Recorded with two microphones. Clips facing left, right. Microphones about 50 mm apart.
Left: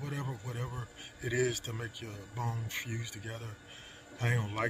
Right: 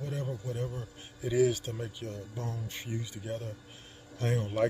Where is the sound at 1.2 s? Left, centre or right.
Left.